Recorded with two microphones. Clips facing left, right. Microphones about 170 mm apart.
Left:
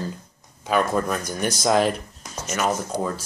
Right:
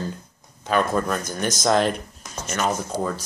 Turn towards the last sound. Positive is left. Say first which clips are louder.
# even
turn(degrees=5)  # may be behind; listen again after turning